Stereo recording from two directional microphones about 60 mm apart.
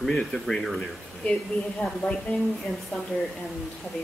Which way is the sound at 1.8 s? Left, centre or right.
Centre.